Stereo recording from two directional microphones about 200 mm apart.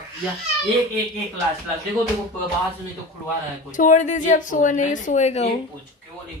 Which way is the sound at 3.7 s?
40° left (ahead or behind).